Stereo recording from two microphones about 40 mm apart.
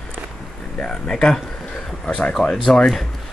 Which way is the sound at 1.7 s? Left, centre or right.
Left.